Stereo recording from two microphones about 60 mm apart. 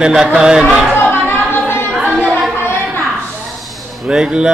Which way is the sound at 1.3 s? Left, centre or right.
Left.